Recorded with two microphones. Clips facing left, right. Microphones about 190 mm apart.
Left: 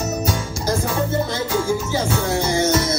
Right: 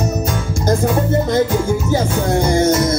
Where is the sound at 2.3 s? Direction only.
50° right (ahead or behind).